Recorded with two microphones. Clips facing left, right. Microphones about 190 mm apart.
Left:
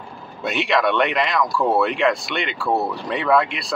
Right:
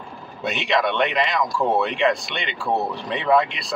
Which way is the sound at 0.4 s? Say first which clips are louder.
Left 2 dB; 20° right (ahead or behind).